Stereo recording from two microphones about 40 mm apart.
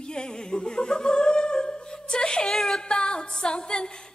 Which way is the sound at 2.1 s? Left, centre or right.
Centre.